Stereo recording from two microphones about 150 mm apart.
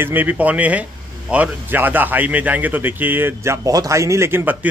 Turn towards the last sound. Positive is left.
turn(degrees=-10)  # may be behind; listen again after turning